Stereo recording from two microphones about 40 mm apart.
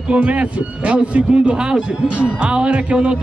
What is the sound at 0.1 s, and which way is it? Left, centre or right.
Speech, right.